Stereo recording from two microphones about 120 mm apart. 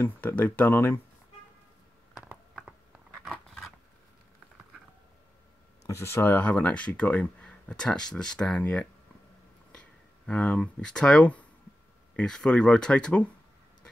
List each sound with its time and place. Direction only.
0.0 s speech: 15° left (ahead or behind)
3.3 s scissors: centre (ahead or behind)
5.9 s speech: 20° left (ahead or behind)